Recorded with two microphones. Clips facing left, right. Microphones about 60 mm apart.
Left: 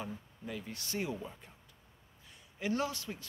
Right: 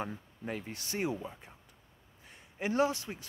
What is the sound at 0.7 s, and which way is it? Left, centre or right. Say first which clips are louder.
Speech: right 3 dB; right.